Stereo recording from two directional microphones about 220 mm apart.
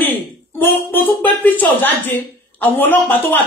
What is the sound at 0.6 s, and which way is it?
Speech, 10° left (ahead or behind).